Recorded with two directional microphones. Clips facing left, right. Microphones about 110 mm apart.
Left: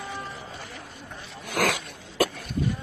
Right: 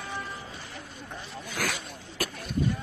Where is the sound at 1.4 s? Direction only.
90° left.